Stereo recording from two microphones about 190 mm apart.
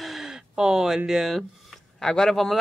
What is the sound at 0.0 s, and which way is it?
Speech, centre (ahead or behind).